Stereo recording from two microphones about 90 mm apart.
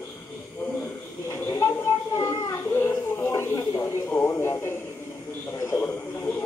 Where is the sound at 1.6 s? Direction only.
35° left (ahead or behind).